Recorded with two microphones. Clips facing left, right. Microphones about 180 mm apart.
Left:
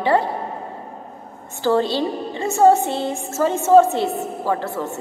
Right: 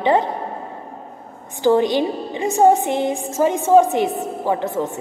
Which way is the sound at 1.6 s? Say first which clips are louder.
Right 3 dB; 15° right (ahead or behind).